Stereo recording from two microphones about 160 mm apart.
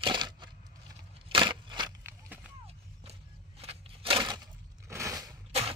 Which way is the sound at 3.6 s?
35° right (ahead or behind).